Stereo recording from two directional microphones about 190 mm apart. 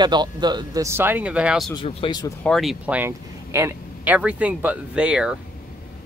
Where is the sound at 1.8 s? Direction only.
25° left (ahead or behind).